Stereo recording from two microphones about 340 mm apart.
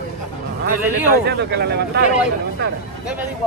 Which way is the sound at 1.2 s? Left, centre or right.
Right.